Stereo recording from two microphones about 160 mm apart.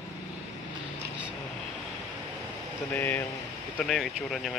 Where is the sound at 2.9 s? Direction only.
10° left (ahead or behind).